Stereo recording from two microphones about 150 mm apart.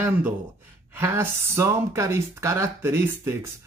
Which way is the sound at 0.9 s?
15° right (ahead or behind).